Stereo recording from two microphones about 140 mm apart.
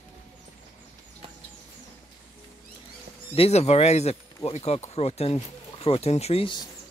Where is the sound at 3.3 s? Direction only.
45° left (ahead or behind).